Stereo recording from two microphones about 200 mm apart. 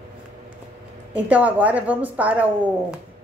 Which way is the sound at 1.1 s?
5° right (ahead or behind).